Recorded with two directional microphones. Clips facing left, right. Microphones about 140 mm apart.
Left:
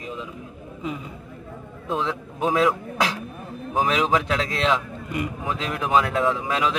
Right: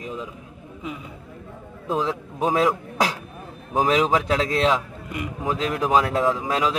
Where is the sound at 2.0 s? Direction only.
35° right (ahead or behind).